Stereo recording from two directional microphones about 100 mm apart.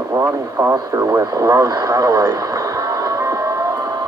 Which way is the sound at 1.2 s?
35° right (ahead or behind).